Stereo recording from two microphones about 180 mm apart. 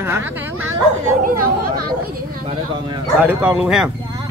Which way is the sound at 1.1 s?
50° right (ahead or behind).